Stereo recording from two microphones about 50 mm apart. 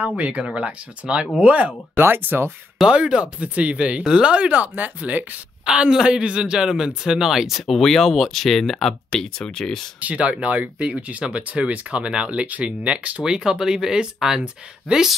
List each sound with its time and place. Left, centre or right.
0.0 s speech: right
1.4 s speech: right
2.0 s speech: right
2.9 s speech: right
5.7 s speech: centre
7.6 s speech: centre
9.9 s speech: right
13.2 s speech: centre